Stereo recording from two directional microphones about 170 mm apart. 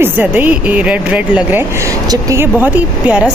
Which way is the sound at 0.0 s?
10° right (ahead or behind).